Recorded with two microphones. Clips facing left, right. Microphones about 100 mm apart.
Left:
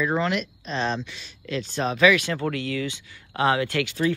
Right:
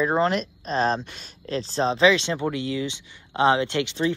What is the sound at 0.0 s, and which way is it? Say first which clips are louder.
Speech: right 3 dB; 35° right (ahead or behind).